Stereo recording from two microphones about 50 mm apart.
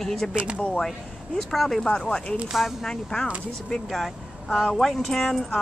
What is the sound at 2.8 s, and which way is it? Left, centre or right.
Speech, centre.